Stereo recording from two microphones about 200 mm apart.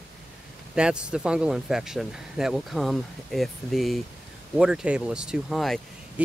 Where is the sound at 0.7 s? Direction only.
5° right (ahead or behind).